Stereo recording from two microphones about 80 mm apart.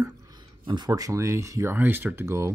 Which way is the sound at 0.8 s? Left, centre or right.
Right.